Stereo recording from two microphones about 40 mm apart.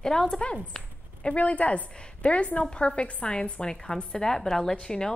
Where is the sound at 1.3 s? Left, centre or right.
Left.